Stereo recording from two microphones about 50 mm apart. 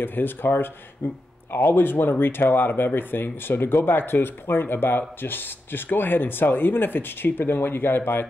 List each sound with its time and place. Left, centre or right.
0.0 s speech: left